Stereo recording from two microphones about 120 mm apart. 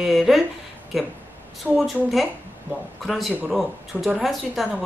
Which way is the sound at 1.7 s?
Centre (ahead or behind).